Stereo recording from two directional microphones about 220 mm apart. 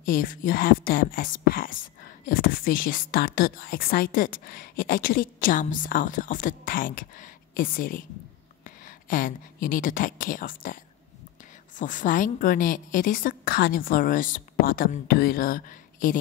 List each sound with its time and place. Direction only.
0.0 s speech: 40° left (ahead or behind)